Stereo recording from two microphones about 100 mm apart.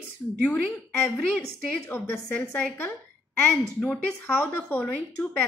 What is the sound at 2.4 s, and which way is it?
Speech, 10° left (ahead or behind).